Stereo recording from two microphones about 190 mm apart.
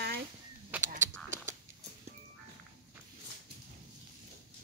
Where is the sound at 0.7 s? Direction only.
10° right (ahead or behind).